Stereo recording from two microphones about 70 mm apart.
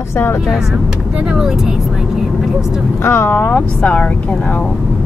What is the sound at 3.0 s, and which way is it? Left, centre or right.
Speech, left.